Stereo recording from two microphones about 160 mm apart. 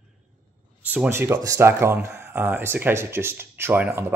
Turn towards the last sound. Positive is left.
turn(degrees=-15)  # may be behind; listen again after turning